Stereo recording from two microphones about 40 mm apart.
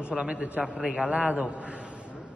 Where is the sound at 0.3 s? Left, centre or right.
Right.